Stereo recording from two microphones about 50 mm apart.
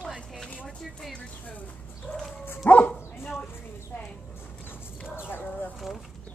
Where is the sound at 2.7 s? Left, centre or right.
Left.